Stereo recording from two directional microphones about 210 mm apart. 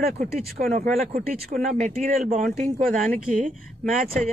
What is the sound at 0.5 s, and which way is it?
Speech, 40° right (ahead or behind).